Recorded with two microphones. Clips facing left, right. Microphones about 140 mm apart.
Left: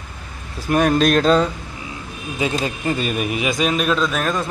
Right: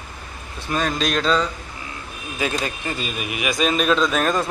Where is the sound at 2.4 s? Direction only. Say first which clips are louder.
Left 3 dB; 20° left (ahead or behind).